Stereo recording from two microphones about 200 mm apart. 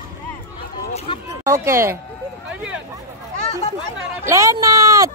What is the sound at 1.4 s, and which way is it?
Speech, 15° right (ahead or behind).